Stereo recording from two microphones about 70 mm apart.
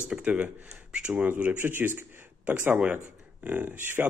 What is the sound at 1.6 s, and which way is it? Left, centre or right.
Speech, right.